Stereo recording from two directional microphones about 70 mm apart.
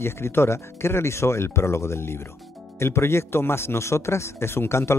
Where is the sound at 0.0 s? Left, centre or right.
Left.